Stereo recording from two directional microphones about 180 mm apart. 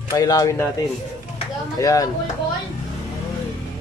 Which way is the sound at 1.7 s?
20° left (ahead or behind).